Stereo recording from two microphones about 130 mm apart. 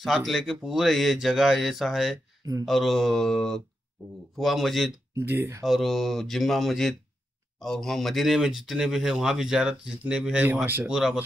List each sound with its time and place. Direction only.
0.0 s speech: centre (ahead or behind)
5.1 s speech: 20° right (ahead or behind)
5.6 s speech: centre (ahead or behind)